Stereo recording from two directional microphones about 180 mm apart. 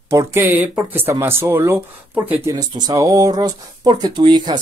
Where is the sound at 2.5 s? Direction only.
20° right (ahead or behind).